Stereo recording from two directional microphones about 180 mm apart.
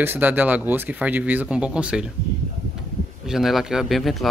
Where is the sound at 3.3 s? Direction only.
Centre (ahead or behind).